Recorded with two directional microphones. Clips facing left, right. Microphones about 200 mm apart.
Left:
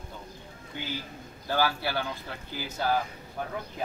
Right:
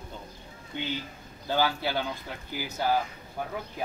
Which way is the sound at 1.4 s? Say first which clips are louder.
Right 1 dB; 20° right (ahead or behind).